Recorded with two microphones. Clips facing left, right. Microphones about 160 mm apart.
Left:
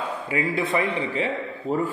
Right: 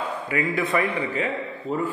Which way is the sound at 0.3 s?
30° left (ahead or behind).